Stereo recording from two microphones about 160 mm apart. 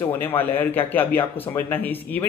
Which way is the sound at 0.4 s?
10° left (ahead or behind).